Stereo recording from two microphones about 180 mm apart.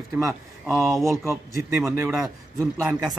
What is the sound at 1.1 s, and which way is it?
A man's voice, 15° right (ahead or behind).